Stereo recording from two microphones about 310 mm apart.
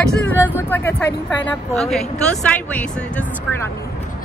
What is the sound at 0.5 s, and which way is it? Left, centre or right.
Speech, centre.